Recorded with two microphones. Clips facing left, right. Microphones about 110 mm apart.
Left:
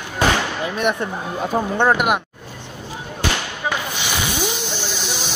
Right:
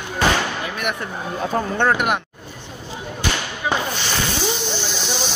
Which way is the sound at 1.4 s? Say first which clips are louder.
Left 2 dB; 10° left (ahead or behind).